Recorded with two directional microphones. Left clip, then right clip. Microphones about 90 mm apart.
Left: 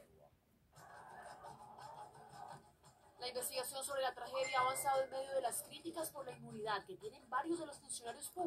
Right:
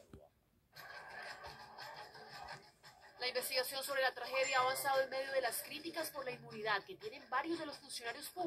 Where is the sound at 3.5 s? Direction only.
20° left (ahead or behind).